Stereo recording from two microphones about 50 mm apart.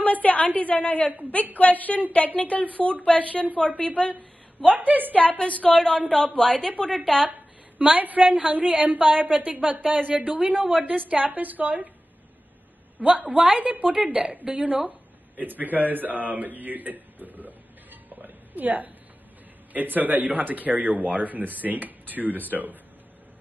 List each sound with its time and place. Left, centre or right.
0.0 s a woman's voice: left
4.7 s speech: right
5.4 s speech: left
5.8 s a woman's voice: centre
7.8 s a woman's voice: right
13.0 s a woman's voice: right
13.9 s a woman's voice: centre
14.9 s speech: right
18.1 s a sound: right
19.7 s speech: right